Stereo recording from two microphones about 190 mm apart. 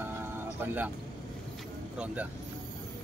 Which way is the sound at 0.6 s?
10° right (ahead or behind).